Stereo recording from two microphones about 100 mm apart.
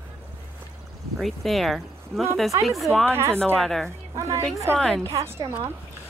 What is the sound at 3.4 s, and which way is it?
Speech, 5° left (ahead or behind).